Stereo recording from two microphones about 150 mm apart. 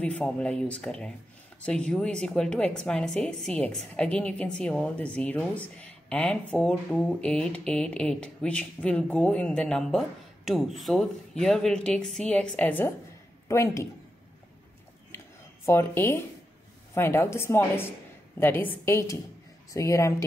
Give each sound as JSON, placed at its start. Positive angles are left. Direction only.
{"t": 0.0, "sound": "a woman's voice", "side_deg": 10}
{"t": 15.0, "sound": "a sound", "side_deg": 15}
{"t": 16.9, "sound": "a woman's voice", "side_deg": 15}